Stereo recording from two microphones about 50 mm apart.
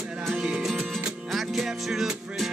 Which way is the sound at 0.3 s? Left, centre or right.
Centre.